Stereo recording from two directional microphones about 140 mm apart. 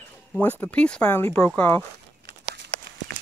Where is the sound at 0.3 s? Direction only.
10° left (ahead or behind).